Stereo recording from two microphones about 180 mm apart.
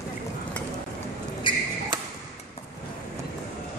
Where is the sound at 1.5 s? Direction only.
25° left (ahead or behind).